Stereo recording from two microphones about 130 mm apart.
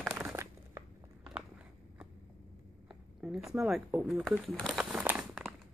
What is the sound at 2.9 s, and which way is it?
Speech, 5° right (ahead or behind).